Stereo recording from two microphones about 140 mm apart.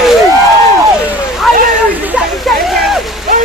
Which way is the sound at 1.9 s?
10° right (ahead or behind).